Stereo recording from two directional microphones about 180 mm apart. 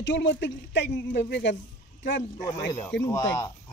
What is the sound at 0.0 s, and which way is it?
Speech, 80° left.